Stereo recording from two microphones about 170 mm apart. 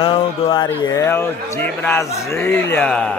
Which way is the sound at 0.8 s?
15° left (ahead or behind).